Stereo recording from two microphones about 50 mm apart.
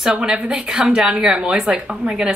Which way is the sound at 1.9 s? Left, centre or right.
Right.